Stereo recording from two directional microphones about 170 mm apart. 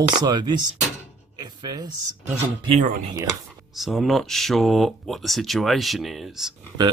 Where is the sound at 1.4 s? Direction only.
25° right (ahead or behind).